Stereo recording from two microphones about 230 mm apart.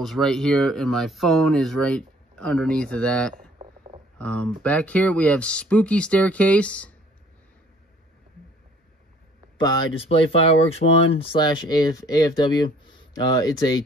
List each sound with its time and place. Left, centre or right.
0.0 s speech: centre
9.6 s speech: left
10.8 s speech: left
11.1 s speech: centre